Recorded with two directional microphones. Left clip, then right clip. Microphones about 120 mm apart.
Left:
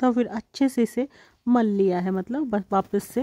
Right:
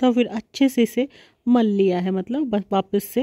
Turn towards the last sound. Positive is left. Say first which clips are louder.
# right 2 dB
turn(degrees=-25)  # may be behind; listen again after turning